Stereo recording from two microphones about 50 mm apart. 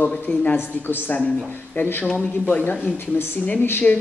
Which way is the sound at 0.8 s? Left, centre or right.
Left.